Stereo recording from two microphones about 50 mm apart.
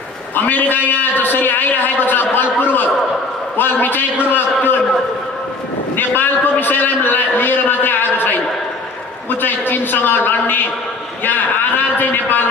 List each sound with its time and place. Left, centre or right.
0.4 s a man's voice: left
5.9 s a man's voice: left
9.4 s a man's voice: left
12.0 s a man's voice: left